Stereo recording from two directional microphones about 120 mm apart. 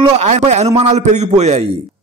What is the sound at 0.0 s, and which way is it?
A man's voice, 70° right (ahead or behind).